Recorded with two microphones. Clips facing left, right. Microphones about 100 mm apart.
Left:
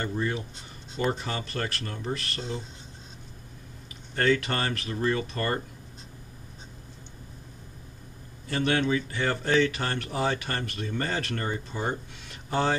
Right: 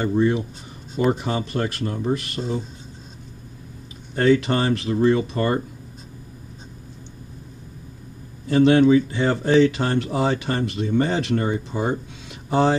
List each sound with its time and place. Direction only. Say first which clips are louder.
0.0 s speech: right 10 dB; 20° right (ahead or behind)
4.1 s speech: right 7 dB; 20° right (ahead or behind)
8.5 s speech: right 11 dB; 20° right (ahead or behind)